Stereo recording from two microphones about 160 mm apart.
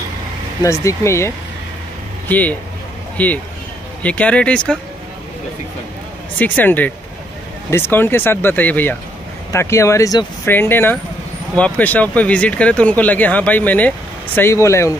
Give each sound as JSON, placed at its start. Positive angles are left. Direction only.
{"t": 0.8, "sound": "speech", "side_deg": 15}
{"t": 6.3, "sound": "speech", "side_deg": 10}